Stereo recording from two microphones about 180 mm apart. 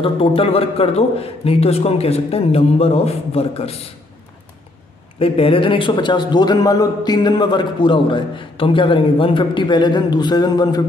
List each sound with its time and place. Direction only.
0.0 s a man's voice: 30° left (ahead or behind)
5.2 s a man's voice: 30° left (ahead or behind)